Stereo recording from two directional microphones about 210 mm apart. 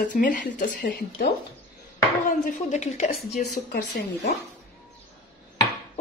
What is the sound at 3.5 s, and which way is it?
Speech, 45° left (ahead or behind).